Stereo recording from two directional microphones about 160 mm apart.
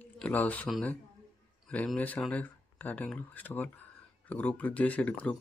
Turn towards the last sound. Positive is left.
turn(degrees=10)  # may be behind; listen again after turning